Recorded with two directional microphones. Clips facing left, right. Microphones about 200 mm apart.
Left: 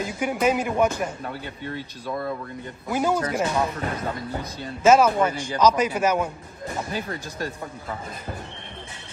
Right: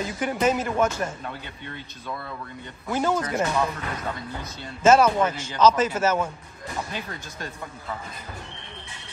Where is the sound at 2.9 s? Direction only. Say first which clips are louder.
Left 1 dB; 10° left (ahead or behind).